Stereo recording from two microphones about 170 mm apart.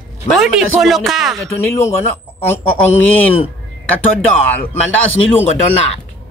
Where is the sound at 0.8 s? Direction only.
Centre (ahead or behind).